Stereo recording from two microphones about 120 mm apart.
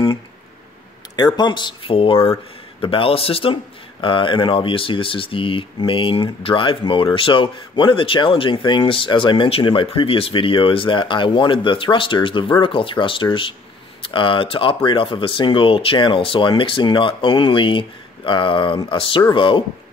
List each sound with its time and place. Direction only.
1.1 s speech: 35° left (ahead or behind)